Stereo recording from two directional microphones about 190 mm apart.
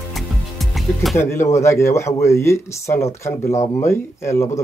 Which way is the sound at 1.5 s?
15° left (ahead or behind).